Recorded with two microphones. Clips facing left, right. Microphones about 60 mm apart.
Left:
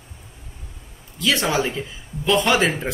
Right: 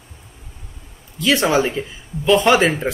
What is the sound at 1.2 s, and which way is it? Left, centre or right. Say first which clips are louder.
Speech: right 4 dB; centre.